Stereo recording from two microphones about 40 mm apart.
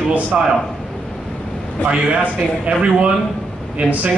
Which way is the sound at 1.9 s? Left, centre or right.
Right.